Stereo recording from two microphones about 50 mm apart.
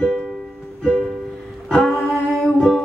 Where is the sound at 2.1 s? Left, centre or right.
Centre.